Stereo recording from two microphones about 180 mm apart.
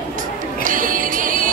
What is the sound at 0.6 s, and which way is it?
Music, 50° right (ahead or behind).